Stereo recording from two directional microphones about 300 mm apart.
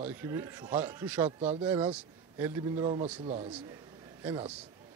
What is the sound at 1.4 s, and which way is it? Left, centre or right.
Speech, right.